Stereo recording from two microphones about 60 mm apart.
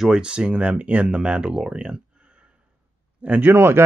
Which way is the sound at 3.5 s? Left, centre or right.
Right.